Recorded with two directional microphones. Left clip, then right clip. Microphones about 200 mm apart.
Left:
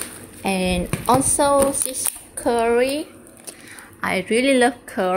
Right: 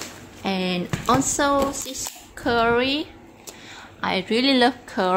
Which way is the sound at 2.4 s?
5° right (ahead or behind).